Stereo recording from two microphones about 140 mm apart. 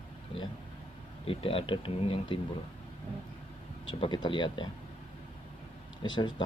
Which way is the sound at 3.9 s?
35° left (ahead or behind).